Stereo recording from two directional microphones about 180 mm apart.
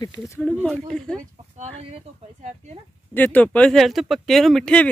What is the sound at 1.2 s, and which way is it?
Speech, 40° right (ahead or behind).